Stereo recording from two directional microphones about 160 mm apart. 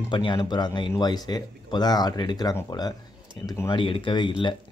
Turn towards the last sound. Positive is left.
turn(degrees=30)  # may be behind; listen again after turning